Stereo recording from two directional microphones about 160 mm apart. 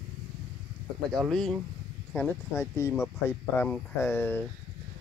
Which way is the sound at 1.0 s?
5° left (ahead or behind).